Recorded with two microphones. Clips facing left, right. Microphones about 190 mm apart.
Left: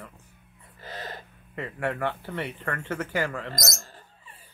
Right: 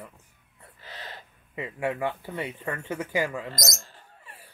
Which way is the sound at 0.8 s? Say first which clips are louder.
Left 5 dB; 45° left (ahead or behind).